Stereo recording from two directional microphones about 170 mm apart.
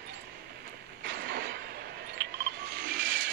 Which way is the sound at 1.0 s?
85° right.